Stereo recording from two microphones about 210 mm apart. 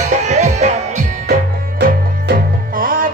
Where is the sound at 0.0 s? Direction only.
35° right (ahead or behind).